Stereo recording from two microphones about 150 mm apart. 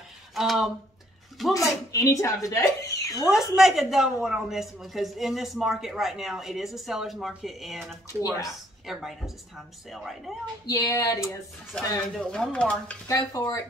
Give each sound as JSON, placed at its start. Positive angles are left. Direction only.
{"t": 0.3, "sound": "speech", "side_deg": 0}
{"t": 1.5, "sound": "speech", "side_deg": 20}
{"t": 3.2, "sound": "a woman's voice", "side_deg": 0}
{"t": 8.1, "sound": "speech", "side_deg": 20}
{"t": 8.8, "sound": "a woman's voice", "side_deg": 0}
{"t": 10.7, "sound": "speech", "side_deg": 20}
{"t": 11.7, "sound": "a woman's voice", "side_deg": 5}
{"t": 13.4, "sound": "speech", "side_deg": 20}